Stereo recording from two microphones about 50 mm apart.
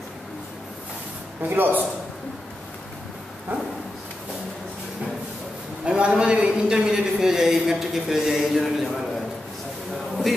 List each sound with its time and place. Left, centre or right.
1.4 s a man's voice: right
5.9 s a man's voice: right; by 8.9 s centre